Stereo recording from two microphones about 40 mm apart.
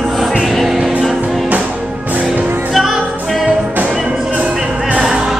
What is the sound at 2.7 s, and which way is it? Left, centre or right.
Music, centre.